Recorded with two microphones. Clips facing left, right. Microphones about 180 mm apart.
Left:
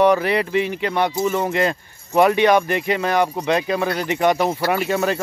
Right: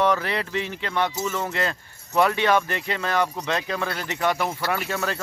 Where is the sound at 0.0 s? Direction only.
15° left (ahead or behind).